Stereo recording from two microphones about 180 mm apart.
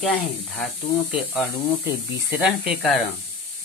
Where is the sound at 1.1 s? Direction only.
10° right (ahead or behind).